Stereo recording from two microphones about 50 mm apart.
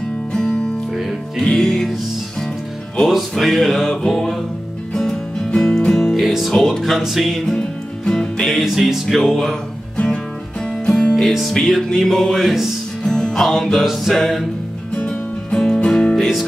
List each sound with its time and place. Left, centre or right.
0.3 s music: centre
3.1 s music: centre
5.9 s music: centre
6.1 s music: centre
6.5 s music: centre
6.8 s music: centre
8.5 s music: centre
10.9 s music: centre
11.2 s music: centre
11.5 s music: centre
15.0 s music: left